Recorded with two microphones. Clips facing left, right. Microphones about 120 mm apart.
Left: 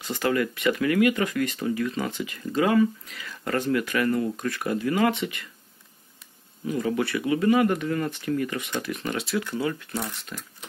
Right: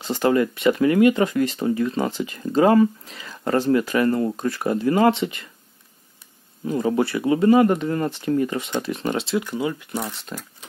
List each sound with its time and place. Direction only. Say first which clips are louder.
0.0 s speech: right 5 dB; 30° right (ahead or behind)
6.6 s speech: right 5 dB; 30° right (ahead or behind); by 10.1 s 15° right (ahead or behind)